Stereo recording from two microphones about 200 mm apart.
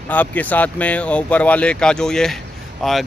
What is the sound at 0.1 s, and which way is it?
Speech, 10° left (ahead or behind).